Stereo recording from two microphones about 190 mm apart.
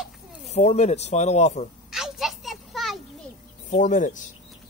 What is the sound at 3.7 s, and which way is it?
Speech, 40° left (ahead or behind).